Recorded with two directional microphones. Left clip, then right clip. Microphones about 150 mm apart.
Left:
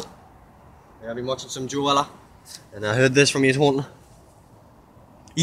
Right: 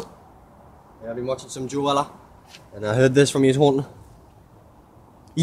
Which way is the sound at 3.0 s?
30° right (ahead or behind).